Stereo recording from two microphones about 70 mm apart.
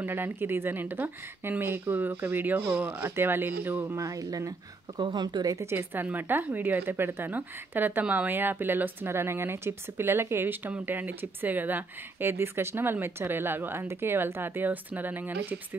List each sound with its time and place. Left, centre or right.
0.0 s speech: right
3.8 s speech: right
4.9 s speech: right
5.5 s speech: right
6.1 s speech: right